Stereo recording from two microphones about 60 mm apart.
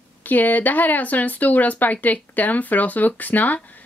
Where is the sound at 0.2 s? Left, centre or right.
Left.